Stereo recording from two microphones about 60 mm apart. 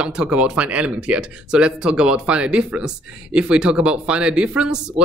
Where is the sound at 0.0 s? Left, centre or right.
Centre.